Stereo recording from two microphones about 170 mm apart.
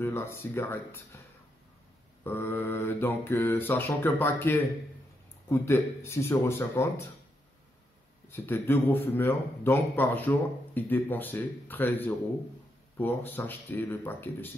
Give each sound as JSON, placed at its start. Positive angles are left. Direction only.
{"t": 0.0, "sound": "a man's voice", "side_deg": 15}
{"t": 2.2, "sound": "a man's voice", "side_deg": 15}
{"t": 8.3, "sound": "a man's voice", "side_deg": 10}